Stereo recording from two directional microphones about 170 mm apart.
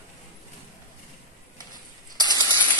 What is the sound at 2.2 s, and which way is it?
Mechanisms, 25° right (ahead or behind).